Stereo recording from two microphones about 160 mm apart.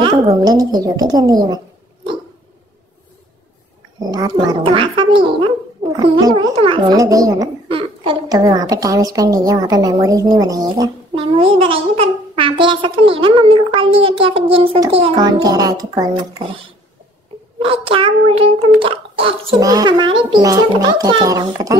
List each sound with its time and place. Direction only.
0.0 s a woman's voice: 25° right (ahead or behind)
4.0 s a woman's voice: 25° right (ahead or behind)
7.0 s a woman's voice: 20° right (ahead or behind)
7.6 s a woman's voice: 35° right (ahead or behind)
11.1 s a child's voice: 35° right (ahead or behind)
15.1 s a woman's voice: 25° right (ahead or behind)
17.6 s a child's voice: 35° right (ahead or behind)
19.6 s a woman's voice: 25° right (ahead or behind)